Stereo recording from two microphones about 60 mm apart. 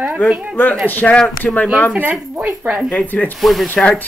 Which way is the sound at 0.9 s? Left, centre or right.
Left.